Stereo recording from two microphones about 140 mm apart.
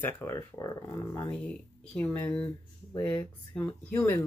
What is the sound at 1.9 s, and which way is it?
Speech, 10° left (ahead or behind).